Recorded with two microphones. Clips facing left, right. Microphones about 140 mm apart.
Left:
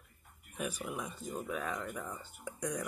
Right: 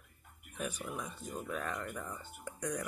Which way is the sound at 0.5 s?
10° left (ahead or behind).